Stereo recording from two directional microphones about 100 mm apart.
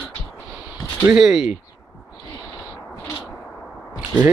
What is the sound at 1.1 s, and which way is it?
Speech, 5° right (ahead or behind).